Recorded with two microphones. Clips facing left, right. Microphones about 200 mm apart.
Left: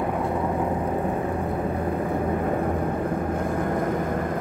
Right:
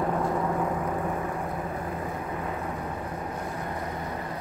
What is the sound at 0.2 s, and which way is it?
Vehicle, 60° left (ahead or behind).